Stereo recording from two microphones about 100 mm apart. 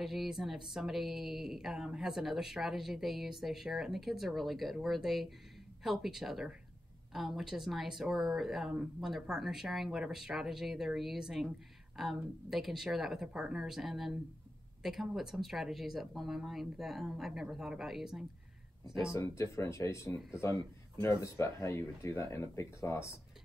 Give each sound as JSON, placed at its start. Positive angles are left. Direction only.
{"t": 0.0, "sound": "speech", "side_deg": 0}
{"t": 19.1, "sound": "speech", "side_deg": 30}